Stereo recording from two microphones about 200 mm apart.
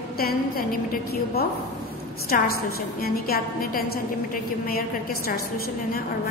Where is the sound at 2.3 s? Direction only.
45° left (ahead or behind).